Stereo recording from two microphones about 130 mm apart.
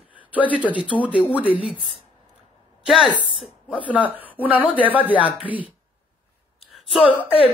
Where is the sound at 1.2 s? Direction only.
10° left (ahead or behind).